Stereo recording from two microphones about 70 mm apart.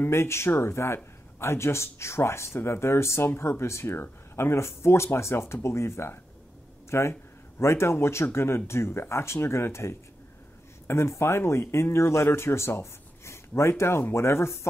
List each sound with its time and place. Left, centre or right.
0.0 s speech: left